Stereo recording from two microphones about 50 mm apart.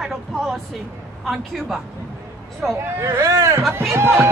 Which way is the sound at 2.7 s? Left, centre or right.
Right.